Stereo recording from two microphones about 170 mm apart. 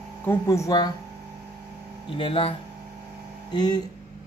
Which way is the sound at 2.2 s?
30° left (ahead or behind).